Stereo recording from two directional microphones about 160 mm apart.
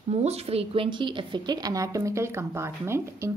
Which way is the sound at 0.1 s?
40° right (ahead or behind).